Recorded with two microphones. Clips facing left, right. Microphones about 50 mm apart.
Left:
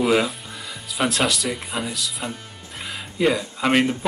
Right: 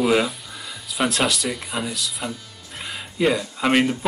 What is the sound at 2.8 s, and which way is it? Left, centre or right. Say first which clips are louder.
Music: even; centre.